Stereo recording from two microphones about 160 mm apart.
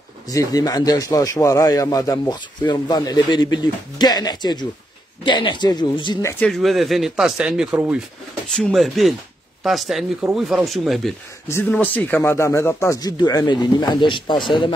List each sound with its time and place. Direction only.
0.3 s a man's voice: 20° left (ahead or behind)
6.4 s speech: centre (ahead or behind)
11.4 s a man's voice: 15° left (ahead or behind)